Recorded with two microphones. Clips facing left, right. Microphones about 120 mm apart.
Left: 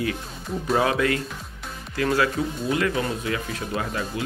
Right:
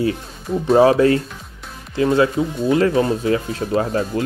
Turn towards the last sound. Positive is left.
turn(degrees=-35)  # may be behind; listen again after turning